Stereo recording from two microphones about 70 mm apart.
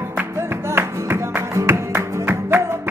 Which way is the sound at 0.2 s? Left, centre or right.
Right.